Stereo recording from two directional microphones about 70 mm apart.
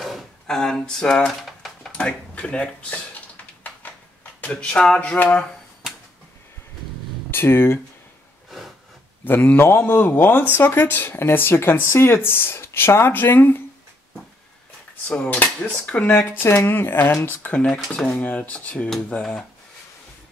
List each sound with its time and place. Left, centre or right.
0.0 s drawer open or close: centre
1.9 s speech: centre
3.8 s a sound: left
7.2 s speech: left
9.2 s speech: left
15.0 s speech: left
16.1 s speech: left